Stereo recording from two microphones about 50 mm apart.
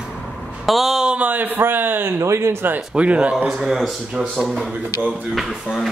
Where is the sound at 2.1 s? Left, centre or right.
Right.